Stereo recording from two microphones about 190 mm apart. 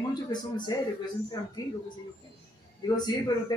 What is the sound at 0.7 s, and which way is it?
Speech, 20° left (ahead or behind).